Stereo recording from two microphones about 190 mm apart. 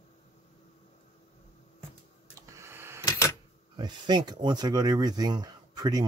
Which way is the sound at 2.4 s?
15° right (ahead or behind).